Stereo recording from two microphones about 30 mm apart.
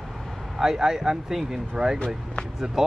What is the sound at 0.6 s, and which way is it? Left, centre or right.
Speech, centre.